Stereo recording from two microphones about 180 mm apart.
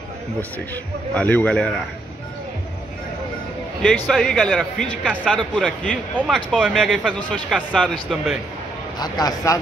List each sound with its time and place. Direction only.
1.1 s a man's voice: 10° left (ahead or behind)
3.8 s speech: centre (ahead or behind)
9.0 s a man's voice: 20° left (ahead or behind)